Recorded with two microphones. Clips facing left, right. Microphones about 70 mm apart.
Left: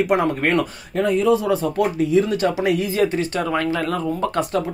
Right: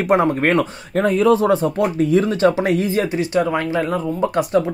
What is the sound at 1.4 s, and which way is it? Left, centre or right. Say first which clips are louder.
Speech: right 3 dB; right.